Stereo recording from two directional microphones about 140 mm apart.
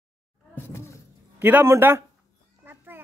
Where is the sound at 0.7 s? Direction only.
20° left (ahead or behind).